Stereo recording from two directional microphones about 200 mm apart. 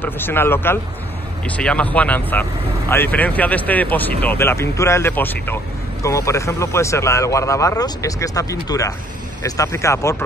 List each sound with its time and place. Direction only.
0.0 s speech: 10° left (ahead or behind)